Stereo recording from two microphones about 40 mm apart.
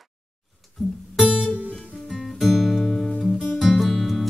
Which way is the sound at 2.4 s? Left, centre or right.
Centre.